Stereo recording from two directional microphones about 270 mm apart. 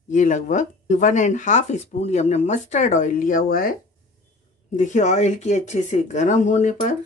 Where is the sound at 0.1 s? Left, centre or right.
Left.